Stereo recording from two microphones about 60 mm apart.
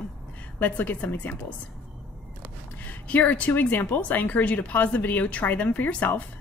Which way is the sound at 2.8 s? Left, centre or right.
Left.